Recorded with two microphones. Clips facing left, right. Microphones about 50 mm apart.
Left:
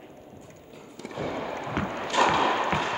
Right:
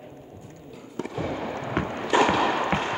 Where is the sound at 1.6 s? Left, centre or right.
Centre.